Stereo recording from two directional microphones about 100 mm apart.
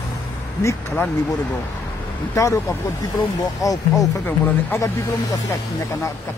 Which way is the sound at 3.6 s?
35° left (ahead or behind).